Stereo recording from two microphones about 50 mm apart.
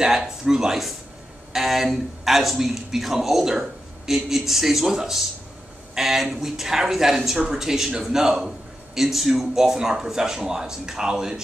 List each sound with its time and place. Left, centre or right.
0.0 s speech: centre